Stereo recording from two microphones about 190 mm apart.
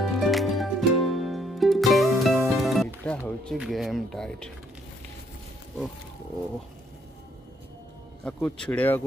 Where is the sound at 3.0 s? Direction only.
5° left (ahead or behind).